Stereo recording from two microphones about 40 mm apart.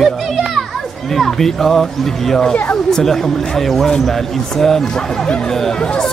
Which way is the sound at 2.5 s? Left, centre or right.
Left.